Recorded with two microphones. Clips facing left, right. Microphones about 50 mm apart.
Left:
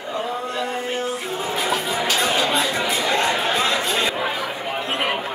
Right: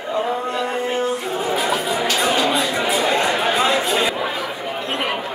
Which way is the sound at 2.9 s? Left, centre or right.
Centre.